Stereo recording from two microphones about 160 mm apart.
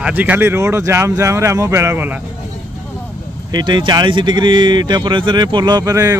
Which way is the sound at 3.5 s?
30° right (ahead or behind).